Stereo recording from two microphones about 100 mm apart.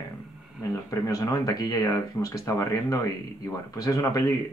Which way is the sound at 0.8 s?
35° left (ahead or behind).